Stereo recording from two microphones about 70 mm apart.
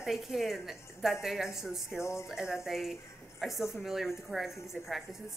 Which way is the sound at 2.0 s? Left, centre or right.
Left.